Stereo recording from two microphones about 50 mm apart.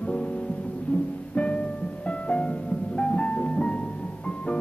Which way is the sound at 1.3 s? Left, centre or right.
Left.